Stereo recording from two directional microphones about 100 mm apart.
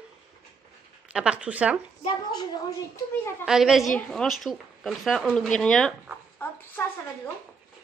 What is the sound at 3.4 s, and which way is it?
Speech, 5° right (ahead or behind).